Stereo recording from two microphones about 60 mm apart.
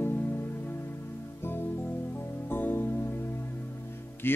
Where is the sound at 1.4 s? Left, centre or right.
Left.